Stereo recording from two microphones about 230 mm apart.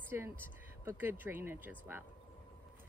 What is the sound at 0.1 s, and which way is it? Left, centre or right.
A woman's voice, centre.